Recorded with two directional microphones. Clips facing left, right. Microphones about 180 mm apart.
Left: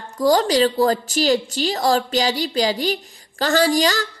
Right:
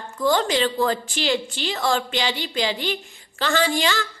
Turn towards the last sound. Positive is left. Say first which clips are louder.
# left 4 dB
turn(degrees=40)  # may be behind; listen again after turning